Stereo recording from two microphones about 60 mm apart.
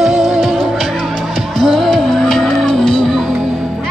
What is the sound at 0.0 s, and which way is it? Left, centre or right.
Music, centre.